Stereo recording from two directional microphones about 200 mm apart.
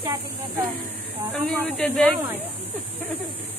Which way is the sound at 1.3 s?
5° left (ahead or behind).